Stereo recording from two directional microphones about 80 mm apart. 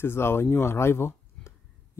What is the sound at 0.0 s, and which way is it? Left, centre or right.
Speech, left.